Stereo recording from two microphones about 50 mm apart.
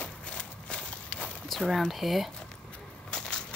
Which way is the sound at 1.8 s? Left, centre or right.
Centre.